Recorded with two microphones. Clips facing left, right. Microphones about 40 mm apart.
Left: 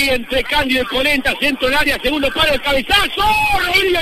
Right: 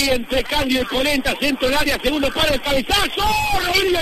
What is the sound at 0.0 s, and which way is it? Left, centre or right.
A man's voice, left.